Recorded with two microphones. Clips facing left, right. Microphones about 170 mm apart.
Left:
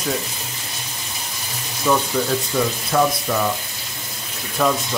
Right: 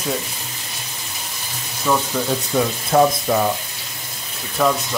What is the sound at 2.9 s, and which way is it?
Frying, 30° right (ahead or behind).